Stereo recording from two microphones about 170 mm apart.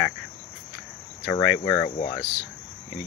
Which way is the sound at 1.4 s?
10° left (ahead or behind).